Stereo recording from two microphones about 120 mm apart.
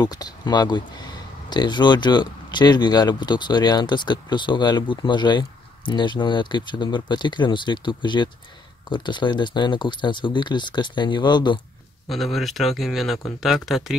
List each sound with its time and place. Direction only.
0.0 s speech: 35° left (ahead or behind)
12.1 s speech: centre (ahead or behind)